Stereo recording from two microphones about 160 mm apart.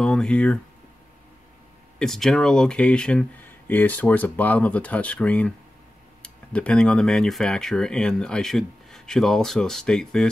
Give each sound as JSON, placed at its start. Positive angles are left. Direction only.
{"t": 0.0, "sound": "speech", "side_deg": 5}
{"t": 2.0, "sound": "speech", "side_deg": 0}